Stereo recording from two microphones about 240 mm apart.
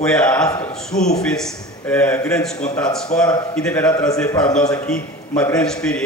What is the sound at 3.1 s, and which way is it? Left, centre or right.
Speech, left.